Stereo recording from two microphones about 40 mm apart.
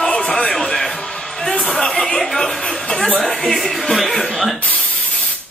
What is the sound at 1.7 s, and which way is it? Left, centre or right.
A woman's voice, centre.